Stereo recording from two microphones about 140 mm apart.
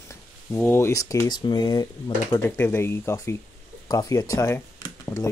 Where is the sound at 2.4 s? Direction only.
15° left (ahead or behind).